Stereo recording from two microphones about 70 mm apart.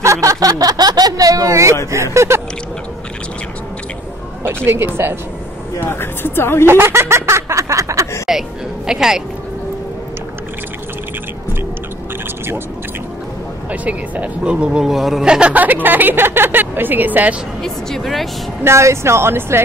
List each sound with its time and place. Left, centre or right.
0.0 s speech: right
4.6 s speech: right
5.8 s speech: left
6.6 s speech: right
8.3 s speech: centre
13.7 s speech: right; by 15.2 s centre
15.2 s speech: centre
15.5 s speech: right
17.6 s speech: centre
18.6 s speech: right